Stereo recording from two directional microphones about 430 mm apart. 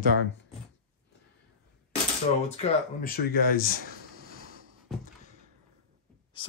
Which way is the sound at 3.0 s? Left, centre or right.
Left.